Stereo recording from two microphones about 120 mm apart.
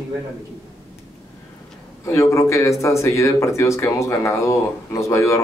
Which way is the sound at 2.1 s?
25° left (ahead or behind).